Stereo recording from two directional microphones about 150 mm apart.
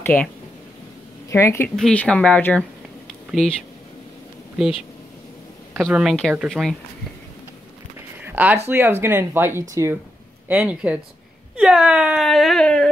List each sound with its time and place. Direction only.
0.0 s speech: 15° left (ahead or behind)
1.3 s speech: 20° left (ahead or behind)
1.8 s speech: 5° left (ahead or behind)
5.8 s speech: centre (ahead or behind)
8.3 s a sound: 10° right (ahead or behind)
8.6 s speech: 15° right (ahead or behind); by 12.8 s 5° left (ahead or behind)